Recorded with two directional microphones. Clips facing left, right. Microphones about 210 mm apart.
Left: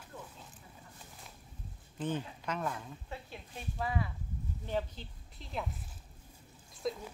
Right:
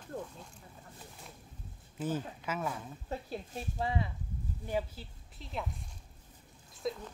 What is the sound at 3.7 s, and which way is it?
Speech, 25° right (ahead or behind).